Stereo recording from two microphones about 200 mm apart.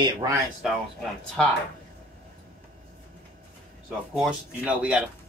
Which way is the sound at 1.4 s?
5° left (ahead or behind).